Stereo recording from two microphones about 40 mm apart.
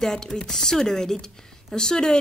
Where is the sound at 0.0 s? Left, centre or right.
Centre.